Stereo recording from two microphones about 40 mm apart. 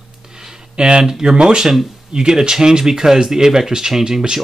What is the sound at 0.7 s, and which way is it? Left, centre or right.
Speech, right.